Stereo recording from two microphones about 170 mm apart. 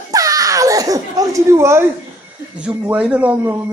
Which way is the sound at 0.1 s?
20° right (ahead or behind).